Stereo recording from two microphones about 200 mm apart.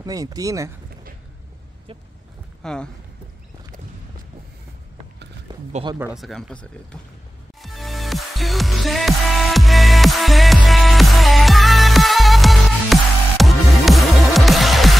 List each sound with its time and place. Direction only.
0.0 s speech: 20° right (ahead or behind)
2.6 s speech: 5° left (ahead or behind)
5.5 s a sound: 20° right (ahead or behind)
5.9 s speech: 5° right (ahead or behind)
7.6 s music: centre (ahead or behind)